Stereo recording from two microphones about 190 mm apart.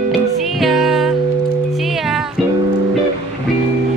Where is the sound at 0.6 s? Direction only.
Centre (ahead or behind).